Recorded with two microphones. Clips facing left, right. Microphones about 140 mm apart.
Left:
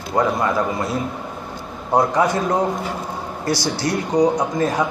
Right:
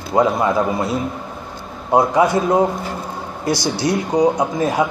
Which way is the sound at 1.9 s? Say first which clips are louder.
Right 3 dB; 10° right (ahead or behind).